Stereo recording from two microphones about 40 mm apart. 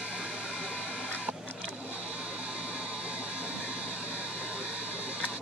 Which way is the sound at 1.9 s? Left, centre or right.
Right.